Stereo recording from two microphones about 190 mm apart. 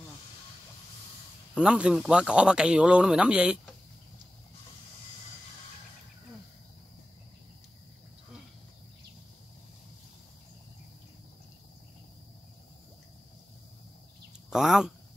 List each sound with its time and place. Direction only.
1.5 s a man's voice: 5° right (ahead or behind)
14.5 s speech: 5° right (ahead or behind)